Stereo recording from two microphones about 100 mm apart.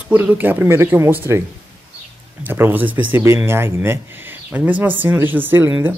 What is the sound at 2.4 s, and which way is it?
Speech, 20° right (ahead or behind).